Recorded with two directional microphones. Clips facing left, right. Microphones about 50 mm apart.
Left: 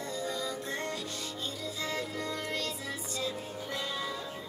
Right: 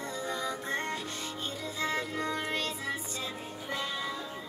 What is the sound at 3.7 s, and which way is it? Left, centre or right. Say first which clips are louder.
Music: right 2 dB; centre.